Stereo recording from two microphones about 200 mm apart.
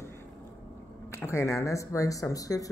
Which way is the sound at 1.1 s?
15° left (ahead or behind).